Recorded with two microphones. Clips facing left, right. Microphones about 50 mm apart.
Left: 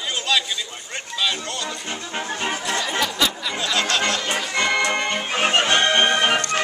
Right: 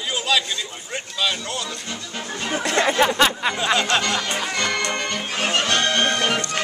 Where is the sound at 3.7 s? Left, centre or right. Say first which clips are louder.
Left 2 dB; right.